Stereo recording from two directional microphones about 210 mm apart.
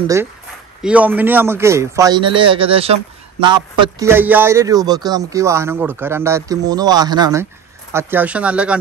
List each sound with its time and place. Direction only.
0.0 s a man's voice: 15° right (ahead or behind)